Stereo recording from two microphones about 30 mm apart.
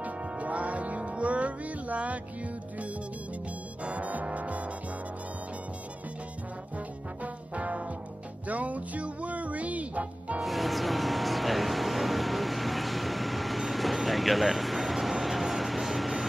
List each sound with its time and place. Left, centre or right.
0.0 s music: right
3.8 s music: right
7.5 s music: right
10.4 s music: centre